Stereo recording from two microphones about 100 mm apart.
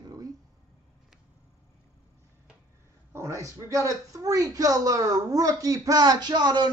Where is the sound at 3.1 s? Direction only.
30° right (ahead or behind).